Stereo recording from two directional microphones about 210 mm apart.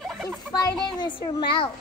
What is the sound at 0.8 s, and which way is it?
Speech, 20° left (ahead or behind).